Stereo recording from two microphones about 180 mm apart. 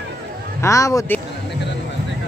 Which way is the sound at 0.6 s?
15° left (ahead or behind).